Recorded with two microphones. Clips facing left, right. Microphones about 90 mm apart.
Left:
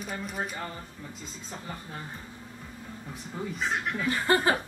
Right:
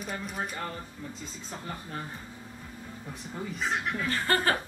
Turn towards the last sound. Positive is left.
turn(degrees=15)  # may be behind; listen again after turning